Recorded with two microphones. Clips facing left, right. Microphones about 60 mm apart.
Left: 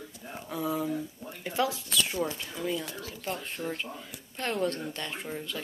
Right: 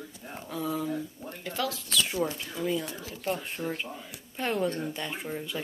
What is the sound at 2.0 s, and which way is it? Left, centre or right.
Speech, centre.